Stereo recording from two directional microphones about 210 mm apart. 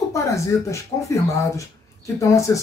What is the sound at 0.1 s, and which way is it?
Speech, 15° left (ahead or behind).